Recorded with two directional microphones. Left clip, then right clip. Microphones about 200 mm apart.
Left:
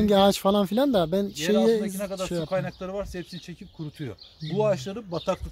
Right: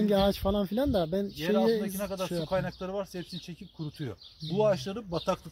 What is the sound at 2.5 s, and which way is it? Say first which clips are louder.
Speech: left 2 dB; centre (ahead or behind).